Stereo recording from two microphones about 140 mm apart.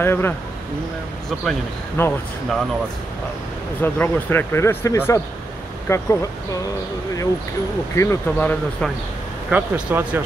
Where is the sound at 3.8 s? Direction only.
15° left (ahead or behind).